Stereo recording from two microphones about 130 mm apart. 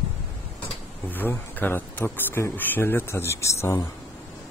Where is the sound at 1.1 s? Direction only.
15° left (ahead or behind).